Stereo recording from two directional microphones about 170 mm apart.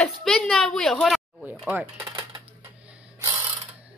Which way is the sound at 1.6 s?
10° right (ahead or behind).